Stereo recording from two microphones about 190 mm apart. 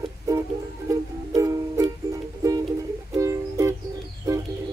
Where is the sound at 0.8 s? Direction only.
15° right (ahead or behind).